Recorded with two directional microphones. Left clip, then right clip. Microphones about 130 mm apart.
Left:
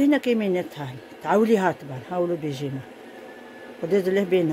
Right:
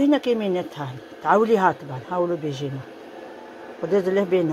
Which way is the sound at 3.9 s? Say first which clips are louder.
Right 1 dB; 20° left (ahead or behind).